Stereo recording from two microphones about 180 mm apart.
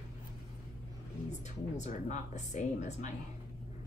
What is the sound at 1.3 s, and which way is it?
Speech, 40° left (ahead or behind).